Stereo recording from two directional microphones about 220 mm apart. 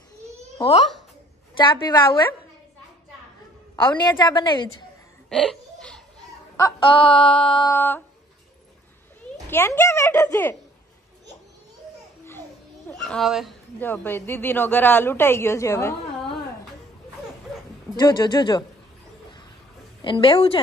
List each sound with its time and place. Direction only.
0.6 s a child's voice: 25° left (ahead or behind)
3.7 s a woman's voice: 20° left (ahead or behind)
5.3 s laughter: centre (ahead or behind)
6.8 s a woman's voice: 25° left (ahead or behind)
7.6 s speech: 10° left (ahead or behind)
9.5 s speech: 10° left (ahead or behind)
12.3 s a child's voice: 10° left (ahead or behind)
17.9 s a woman's voice: 20° left (ahead or behind)
20.0 s a woman's voice: 25° left (ahead or behind)